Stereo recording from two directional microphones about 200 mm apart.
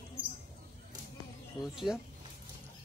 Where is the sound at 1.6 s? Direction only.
Centre (ahead or behind).